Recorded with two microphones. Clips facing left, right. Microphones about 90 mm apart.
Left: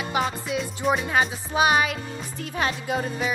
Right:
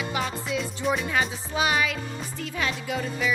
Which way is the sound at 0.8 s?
40° left (ahead or behind).